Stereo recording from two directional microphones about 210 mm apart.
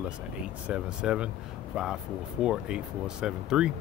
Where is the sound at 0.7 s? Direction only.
5° right (ahead or behind).